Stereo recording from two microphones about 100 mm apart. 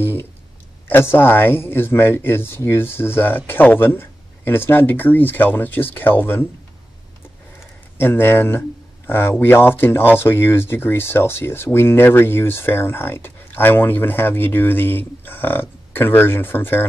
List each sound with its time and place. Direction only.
0.0 s speech: 20° left (ahead or behind)
8.0 s speech: 25° left (ahead or behind)